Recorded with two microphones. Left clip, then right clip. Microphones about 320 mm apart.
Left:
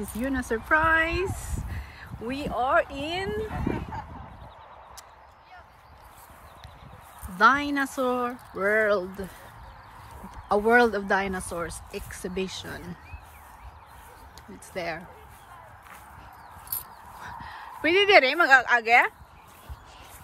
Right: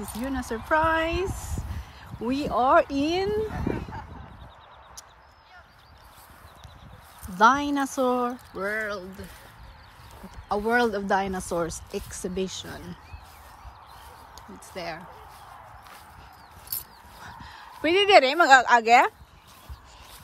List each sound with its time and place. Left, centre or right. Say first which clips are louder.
0.0 s speech: left 2 dB; centre
3.5 s a sound: even; left
7.3 s speech: right 1 dB; centre
10.5 s speech: left 3 dB; centre
14.7 s speech: left 3 dB; centre
17.2 s speech: left 3 dB; centre